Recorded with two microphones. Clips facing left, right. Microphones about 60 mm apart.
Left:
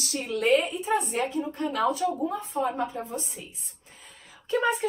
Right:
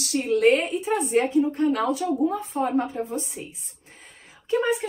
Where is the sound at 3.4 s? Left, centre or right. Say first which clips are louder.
Right 6 dB; right.